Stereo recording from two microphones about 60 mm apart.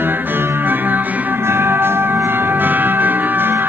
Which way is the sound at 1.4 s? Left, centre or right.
Right.